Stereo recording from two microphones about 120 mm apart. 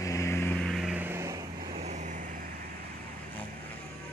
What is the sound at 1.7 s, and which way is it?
Vehicle, 70° right (ahead or behind).